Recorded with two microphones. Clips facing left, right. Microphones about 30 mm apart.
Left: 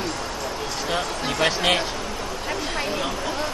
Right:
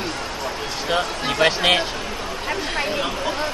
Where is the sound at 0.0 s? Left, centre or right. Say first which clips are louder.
Right 1 dB; centre.